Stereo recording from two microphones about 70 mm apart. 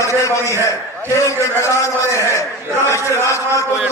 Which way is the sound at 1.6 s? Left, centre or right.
Left.